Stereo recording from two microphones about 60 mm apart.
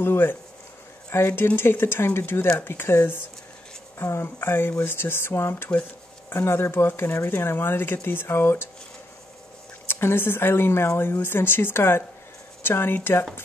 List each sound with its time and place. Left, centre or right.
0.0 s speech: left
9.8 s speech: left